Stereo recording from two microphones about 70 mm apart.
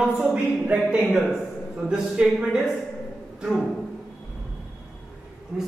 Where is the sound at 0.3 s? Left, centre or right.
Centre.